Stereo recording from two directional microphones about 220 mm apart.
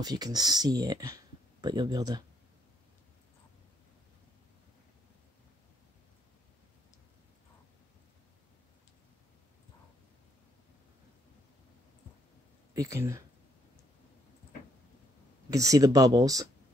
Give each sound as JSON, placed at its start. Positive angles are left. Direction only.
{"t": 0.0, "sound": "speech", "side_deg": -20}
{"t": 12.7, "sound": "speech", "side_deg": -15}
{"t": 15.5, "sound": "speech", "side_deg": -15}